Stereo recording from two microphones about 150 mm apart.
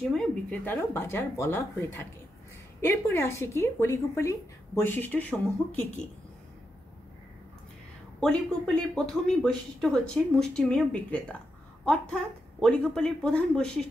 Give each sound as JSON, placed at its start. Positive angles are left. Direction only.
{"t": 0.1, "sound": "speech", "side_deg": 5}
{"t": 8.2, "sound": "speech", "side_deg": 0}